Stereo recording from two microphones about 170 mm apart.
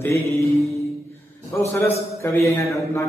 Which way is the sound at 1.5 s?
15° left (ahead or behind).